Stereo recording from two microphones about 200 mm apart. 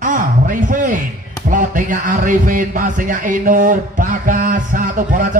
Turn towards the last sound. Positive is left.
turn(degrees=-40)  # may be behind; listen again after turning